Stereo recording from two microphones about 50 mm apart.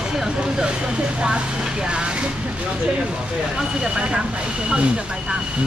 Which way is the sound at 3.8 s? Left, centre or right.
Centre.